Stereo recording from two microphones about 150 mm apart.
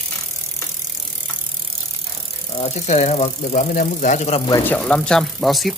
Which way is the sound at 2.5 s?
45° left (ahead or behind).